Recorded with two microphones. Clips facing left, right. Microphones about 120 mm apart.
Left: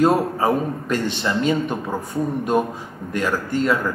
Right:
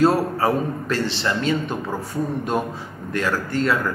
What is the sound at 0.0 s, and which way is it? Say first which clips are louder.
Speech: left 1 dB; 15° left (ahead or behind).